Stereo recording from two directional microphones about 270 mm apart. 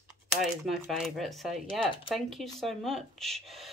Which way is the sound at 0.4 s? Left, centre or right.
Centre.